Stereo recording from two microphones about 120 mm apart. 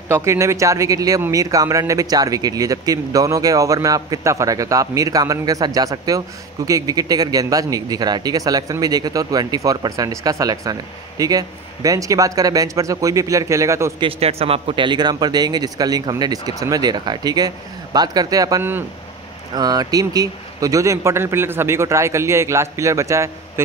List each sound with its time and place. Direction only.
0.1 s speech: 25° right (ahead or behind)
13.9 s speech: 50° right (ahead or behind); by 18.6 s 30° right (ahead or behind)
18.6 s speech: 15° right (ahead or behind)
19.5 s speech: 35° right (ahead or behind)